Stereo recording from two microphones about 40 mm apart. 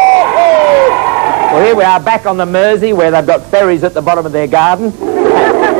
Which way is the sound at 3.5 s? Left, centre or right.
Right.